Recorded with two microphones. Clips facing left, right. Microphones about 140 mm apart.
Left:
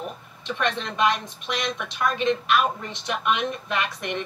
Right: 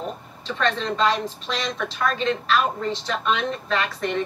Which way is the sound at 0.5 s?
15° left (ahead or behind).